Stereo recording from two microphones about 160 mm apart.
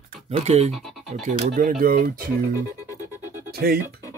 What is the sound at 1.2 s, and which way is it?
Speech, 40° right (ahead or behind).